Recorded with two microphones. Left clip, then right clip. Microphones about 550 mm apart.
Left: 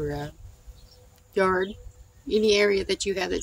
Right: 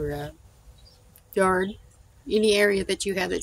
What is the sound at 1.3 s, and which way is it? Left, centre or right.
A woman's voice, right.